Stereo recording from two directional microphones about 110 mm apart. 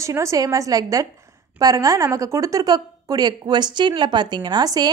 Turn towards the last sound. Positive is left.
turn(degrees=-35)  # may be behind; listen again after turning